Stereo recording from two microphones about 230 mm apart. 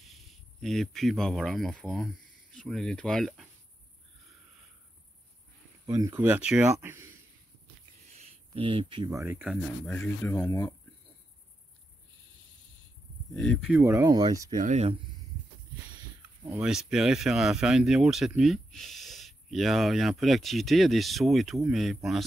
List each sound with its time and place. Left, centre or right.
0.0 s cricket: centre
2.5 s speech: centre
5.9 s speech: centre
8.2 s speech: right; by 9.6 s centre
9.8 s speech: centre
13.3 s speech: centre
14.6 s speech: right
16.4 s speech: centre